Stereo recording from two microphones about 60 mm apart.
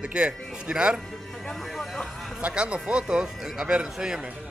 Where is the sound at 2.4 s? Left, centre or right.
Centre.